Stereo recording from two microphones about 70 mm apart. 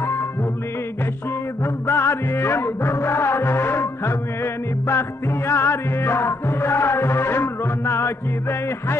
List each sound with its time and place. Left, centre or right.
1.6 s music: left